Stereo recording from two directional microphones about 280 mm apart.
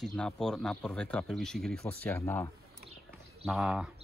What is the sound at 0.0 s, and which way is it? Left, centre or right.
Speech, centre.